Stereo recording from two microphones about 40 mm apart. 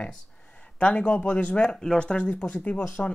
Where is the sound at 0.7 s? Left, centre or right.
Left.